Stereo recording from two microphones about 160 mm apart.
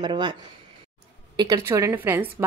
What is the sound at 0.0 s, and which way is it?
A woman's voice, 30° right (ahead or behind).